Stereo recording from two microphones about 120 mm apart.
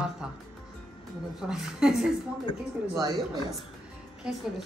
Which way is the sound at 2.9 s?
30° right (ahead or behind).